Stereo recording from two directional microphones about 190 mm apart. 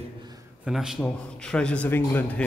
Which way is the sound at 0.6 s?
5° right (ahead or behind).